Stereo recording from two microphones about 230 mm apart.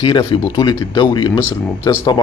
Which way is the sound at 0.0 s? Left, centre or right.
Centre.